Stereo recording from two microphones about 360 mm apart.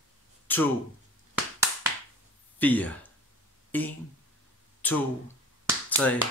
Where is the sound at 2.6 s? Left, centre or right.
Centre.